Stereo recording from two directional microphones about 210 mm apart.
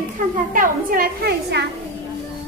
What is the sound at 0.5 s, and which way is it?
A woman's voice, 40° right (ahead or behind).